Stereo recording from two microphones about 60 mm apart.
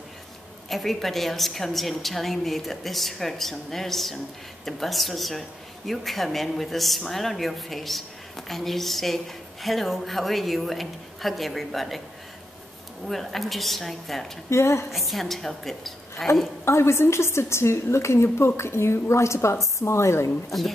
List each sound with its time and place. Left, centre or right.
0.7 s speech: centre
13.0 s speech: centre
14.5 s a woman's voice: left
14.9 s speech: centre
16.6 s a woman's voice: left